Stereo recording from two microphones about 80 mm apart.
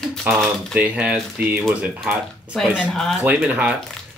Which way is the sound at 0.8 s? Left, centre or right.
Centre.